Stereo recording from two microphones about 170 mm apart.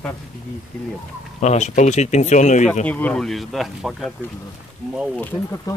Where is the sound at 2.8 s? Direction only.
10° left (ahead or behind).